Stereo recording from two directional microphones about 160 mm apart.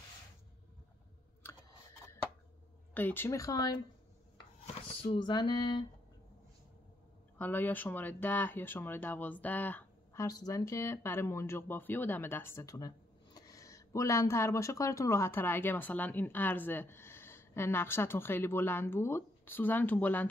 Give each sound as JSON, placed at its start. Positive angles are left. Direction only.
{"t": 2.9, "sound": "speech", "side_deg": 10}
{"t": 4.8, "sound": "speech", "side_deg": 30}
{"t": 7.3, "sound": "speech", "side_deg": 10}
{"t": 10.2, "sound": "speech", "side_deg": 25}